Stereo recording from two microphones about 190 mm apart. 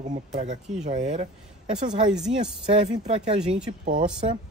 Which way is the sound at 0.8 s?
35° right (ahead or behind).